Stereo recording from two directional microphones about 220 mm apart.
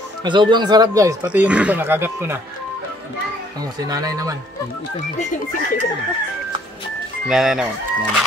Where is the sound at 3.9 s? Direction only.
15° right (ahead or behind).